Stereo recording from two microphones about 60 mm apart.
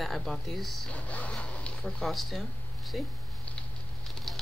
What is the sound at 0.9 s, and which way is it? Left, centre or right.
Speech, left.